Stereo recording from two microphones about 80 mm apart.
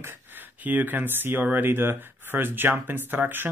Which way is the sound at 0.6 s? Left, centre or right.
Right.